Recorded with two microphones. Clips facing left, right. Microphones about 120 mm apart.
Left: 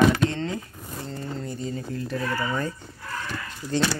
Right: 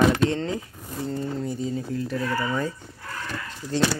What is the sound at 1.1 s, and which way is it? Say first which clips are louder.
Speech: right 4 dB; 10° right (ahead or behind).